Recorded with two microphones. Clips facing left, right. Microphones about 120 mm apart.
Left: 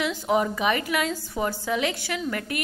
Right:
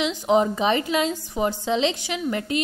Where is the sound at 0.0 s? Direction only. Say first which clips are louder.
Right 4 dB; 20° right (ahead or behind).